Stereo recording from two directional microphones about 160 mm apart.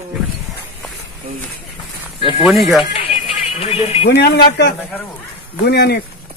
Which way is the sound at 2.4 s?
Centre (ahead or behind).